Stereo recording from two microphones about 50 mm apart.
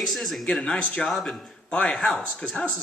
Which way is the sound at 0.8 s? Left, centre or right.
Centre.